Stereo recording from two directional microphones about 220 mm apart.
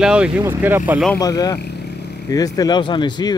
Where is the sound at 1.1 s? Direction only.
15° left (ahead or behind).